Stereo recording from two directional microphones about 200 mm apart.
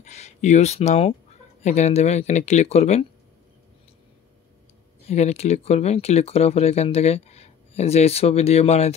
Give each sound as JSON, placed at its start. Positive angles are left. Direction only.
{"t": 0.0, "sound": "speech", "side_deg": 35}
{"t": 5.1, "sound": "speech", "side_deg": 35}